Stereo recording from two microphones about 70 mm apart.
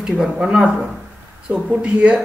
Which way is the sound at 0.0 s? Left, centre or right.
Centre.